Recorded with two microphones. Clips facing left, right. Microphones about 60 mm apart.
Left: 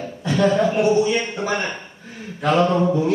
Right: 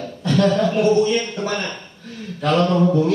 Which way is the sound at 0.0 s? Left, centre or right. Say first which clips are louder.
Right 1 dB; centre.